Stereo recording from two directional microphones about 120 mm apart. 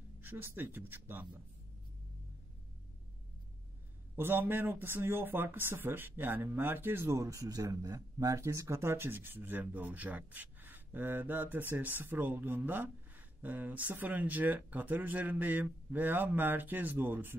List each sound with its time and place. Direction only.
0.2 s speech: 20° right (ahead or behind)
4.2 s speech: 15° right (ahead or behind)